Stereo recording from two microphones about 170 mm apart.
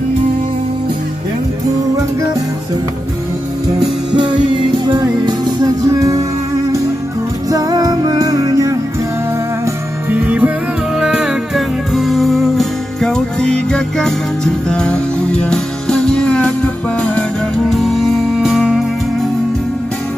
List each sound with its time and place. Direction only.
4.1 s music: 30° right (ahead or behind)
7.5 s music: 20° right (ahead or behind)
10.1 s music: 10° right (ahead or behind)